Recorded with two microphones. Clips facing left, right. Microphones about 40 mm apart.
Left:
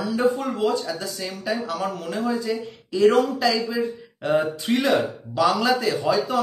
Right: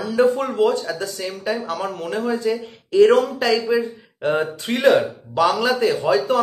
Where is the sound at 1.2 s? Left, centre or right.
Right.